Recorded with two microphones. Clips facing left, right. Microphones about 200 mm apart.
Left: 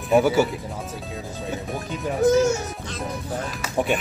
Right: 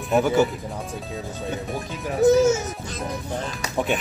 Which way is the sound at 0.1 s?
5° left (ahead or behind).